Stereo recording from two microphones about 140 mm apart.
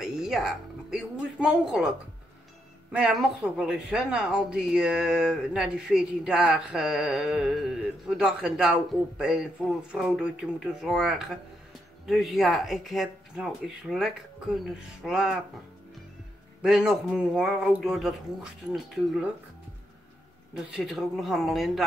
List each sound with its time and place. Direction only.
0.0 s speech: 5° right (ahead or behind)
2.9 s speech: 5° right (ahead or behind)
16.6 s speech: 5° right (ahead or behind)
20.5 s speech: 5° right (ahead or behind)